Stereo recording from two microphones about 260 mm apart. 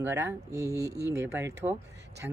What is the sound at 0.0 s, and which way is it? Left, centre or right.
Speech, centre.